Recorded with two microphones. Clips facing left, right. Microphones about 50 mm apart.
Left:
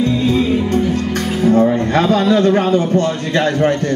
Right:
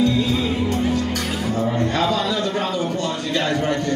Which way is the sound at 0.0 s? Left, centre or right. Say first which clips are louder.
Left 4 dB; left.